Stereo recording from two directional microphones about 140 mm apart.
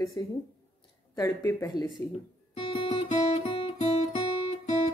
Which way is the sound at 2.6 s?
45° left (ahead or behind).